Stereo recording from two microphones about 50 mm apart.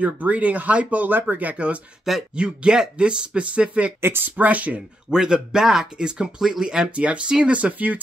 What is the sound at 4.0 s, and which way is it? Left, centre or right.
Speech, right.